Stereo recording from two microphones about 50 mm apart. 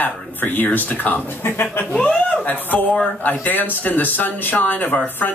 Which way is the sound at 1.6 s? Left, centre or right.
Left.